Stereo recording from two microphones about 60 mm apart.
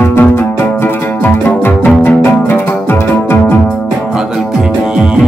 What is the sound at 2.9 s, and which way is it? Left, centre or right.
Organ, left.